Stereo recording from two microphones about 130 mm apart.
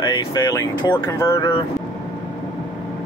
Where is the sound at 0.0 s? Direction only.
35° left (ahead or behind).